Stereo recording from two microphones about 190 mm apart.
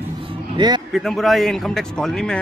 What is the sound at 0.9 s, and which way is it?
A man's voice, centre (ahead or behind).